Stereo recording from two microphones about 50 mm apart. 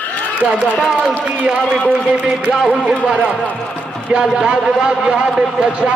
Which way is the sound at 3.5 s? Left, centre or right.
Left.